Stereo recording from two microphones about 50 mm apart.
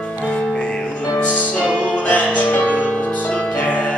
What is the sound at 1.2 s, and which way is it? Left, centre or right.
Music, left.